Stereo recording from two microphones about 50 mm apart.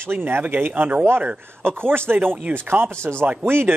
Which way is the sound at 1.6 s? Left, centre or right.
Right.